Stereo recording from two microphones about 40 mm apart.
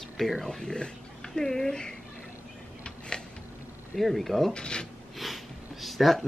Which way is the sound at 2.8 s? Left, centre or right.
Left.